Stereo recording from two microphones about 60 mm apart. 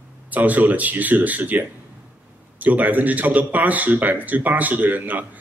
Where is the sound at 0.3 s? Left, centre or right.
Right.